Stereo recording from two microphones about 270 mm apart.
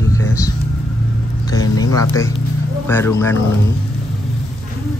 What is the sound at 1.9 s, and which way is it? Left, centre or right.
Speech, centre.